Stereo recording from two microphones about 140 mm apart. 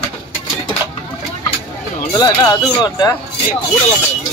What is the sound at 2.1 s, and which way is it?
Speech, 25° left (ahead or behind).